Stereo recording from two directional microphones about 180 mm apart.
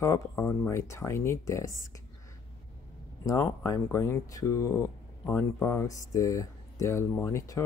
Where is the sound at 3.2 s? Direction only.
15° left (ahead or behind).